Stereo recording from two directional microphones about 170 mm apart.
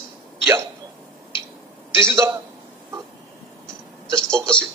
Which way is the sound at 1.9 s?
15° right (ahead or behind).